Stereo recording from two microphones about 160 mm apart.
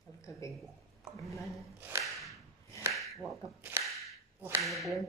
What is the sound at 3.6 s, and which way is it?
Speech, 15° right (ahead or behind).